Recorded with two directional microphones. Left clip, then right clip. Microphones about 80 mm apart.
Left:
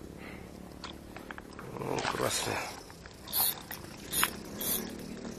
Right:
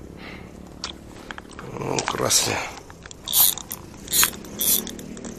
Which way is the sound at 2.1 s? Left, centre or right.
Right.